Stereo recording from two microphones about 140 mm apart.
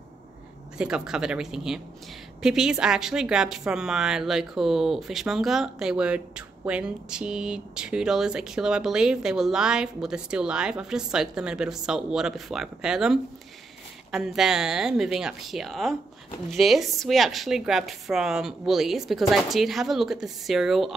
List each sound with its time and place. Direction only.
0.7 s a woman's voice: 5° right (ahead or behind)